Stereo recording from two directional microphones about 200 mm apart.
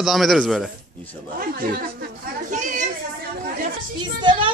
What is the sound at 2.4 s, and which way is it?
Children playing, 40° right (ahead or behind).